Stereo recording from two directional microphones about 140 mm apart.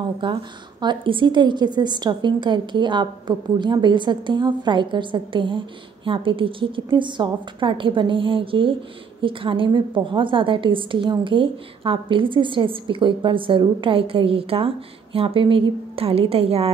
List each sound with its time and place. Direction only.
0.2 s a woman's voice: 35° right (ahead or behind)